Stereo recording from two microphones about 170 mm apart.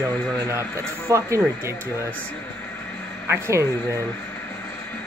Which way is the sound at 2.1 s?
10° left (ahead or behind).